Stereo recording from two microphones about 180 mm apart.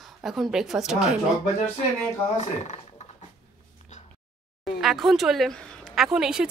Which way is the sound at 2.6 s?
40° left (ahead or behind).